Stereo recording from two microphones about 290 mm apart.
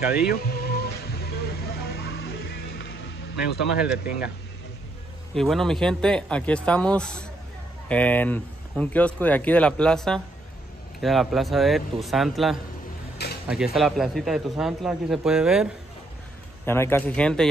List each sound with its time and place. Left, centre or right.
0.2 s vehicle: left
3.7 s speech: centre
5.3 s speech: centre
13.2 s a sound: left
13.7 s speech: centre
16.6 s speech: centre